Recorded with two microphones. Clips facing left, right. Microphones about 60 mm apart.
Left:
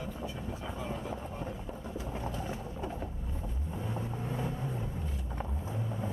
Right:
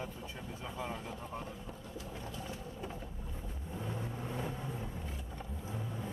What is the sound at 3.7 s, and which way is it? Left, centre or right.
Vehicle, centre.